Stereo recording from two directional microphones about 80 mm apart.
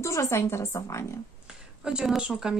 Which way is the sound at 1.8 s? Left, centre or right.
Centre.